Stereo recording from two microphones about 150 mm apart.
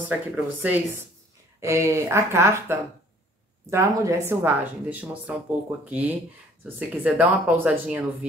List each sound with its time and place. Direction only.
0.0 s speech: 10° right (ahead or behind)